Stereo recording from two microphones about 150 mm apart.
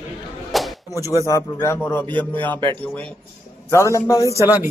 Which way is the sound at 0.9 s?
20° left (ahead or behind).